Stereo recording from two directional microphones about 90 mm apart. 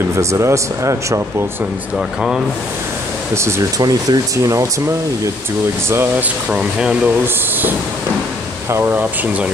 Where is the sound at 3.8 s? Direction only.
45° right (ahead or behind).